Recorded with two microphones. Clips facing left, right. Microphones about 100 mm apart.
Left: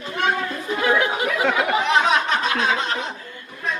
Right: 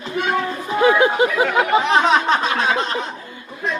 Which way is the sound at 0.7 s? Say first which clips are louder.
Right 6 dB; 25° right (ahead or behind).